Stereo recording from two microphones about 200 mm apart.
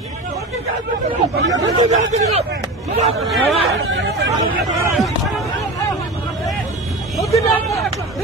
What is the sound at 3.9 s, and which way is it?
Speech, 65° right (ahead or behind).